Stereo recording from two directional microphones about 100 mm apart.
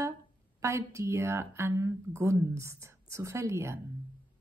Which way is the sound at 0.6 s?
30° right (ahead or behind).